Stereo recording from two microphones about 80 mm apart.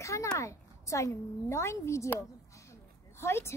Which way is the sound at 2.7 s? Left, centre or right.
Left.